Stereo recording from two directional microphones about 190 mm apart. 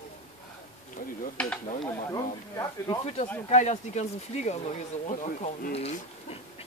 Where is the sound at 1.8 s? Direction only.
20° left (ahead or behind).